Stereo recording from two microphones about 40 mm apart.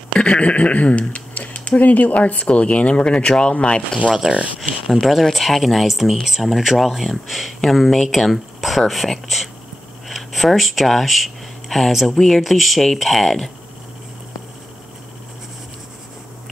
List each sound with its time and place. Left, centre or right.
0.1 s speech: left
4.2 s speech: right
4.6 s speech: centre
10.0 s a sound: centre
11.9 s speech: centre
12.2 s speech: centre